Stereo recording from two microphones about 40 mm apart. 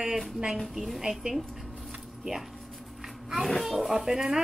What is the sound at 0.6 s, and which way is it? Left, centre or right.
Speech, centre.